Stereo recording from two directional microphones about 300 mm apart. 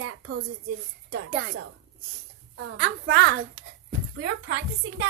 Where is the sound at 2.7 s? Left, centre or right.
Right.